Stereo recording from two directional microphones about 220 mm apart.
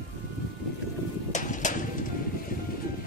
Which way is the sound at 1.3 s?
35° left (ahead or behind).